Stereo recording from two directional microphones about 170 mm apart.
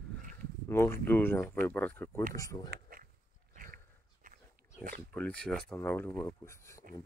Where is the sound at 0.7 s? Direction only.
15° left (ahead or behind).